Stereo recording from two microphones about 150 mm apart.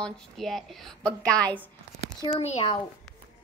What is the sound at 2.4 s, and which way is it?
Speech, 45° left (ahead or behind).